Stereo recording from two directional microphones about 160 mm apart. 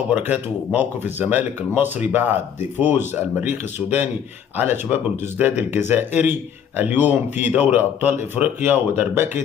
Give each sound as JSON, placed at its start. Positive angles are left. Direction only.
{"t": 0.1, "sound": "speech", "side_deg": -10}